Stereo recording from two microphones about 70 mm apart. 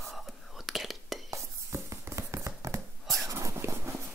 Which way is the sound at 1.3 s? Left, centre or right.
Right.